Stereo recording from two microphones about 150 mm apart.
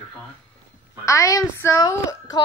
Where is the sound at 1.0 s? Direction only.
20° left (ahead or behind).